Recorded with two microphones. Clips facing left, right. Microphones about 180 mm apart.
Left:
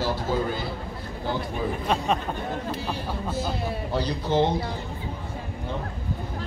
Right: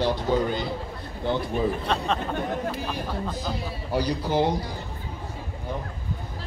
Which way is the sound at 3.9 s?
10° right (ahead or behind).